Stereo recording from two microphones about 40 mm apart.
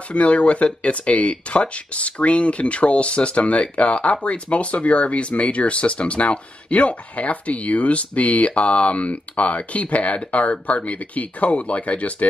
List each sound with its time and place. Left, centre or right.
0.1 s speech: left